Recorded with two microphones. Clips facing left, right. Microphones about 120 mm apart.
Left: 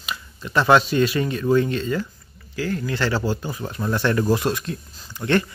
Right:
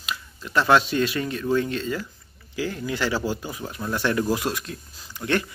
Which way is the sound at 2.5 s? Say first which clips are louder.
Left 2 dB; 15° right (ahead or behind).